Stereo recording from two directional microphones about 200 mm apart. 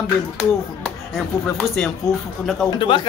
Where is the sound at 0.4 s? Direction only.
Centre (ahead or behind).